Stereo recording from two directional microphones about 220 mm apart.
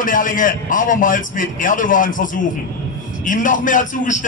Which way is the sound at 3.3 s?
35° left (ahead or behind).